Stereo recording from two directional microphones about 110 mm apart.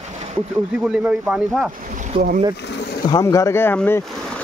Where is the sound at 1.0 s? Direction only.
5° right (ahead or behind).